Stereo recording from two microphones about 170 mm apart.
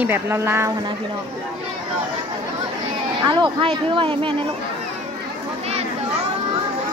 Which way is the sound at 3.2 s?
25° right (ahead or behind).